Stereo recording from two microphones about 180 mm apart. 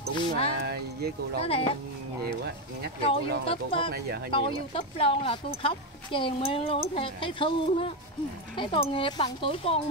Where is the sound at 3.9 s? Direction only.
60° right (ahead or behind).